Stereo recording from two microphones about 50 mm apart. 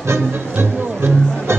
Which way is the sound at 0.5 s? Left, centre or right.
Right.